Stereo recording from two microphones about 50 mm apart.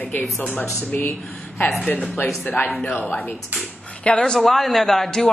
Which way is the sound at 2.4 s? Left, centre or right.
Left.